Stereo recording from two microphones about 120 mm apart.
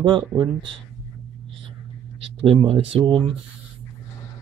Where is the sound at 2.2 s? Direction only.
50° right (ahead or behind).